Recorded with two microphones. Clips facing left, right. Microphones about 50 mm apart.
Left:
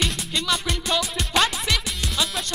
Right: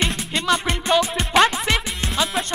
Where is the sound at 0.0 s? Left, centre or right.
Right.